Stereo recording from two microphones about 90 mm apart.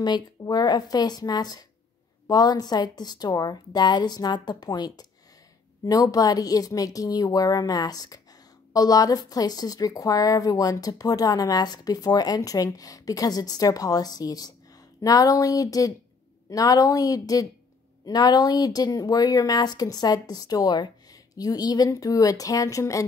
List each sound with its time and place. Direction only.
0.0 s a woman's voice: 50° left (ahead or behind)